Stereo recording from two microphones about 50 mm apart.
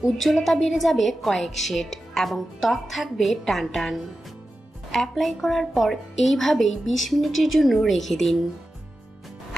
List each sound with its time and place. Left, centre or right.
0.2 s a woman's voice: centre